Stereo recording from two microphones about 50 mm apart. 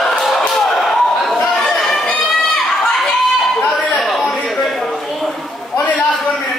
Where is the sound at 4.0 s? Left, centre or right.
Centre.